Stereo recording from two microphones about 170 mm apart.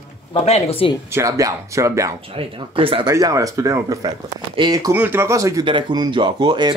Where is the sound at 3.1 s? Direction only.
20° right (ahead or behind).